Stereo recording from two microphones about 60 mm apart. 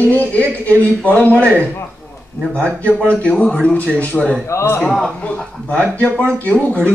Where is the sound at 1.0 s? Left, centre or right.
Left.